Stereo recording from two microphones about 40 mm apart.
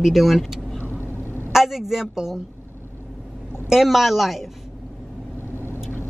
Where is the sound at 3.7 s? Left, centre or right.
Centre.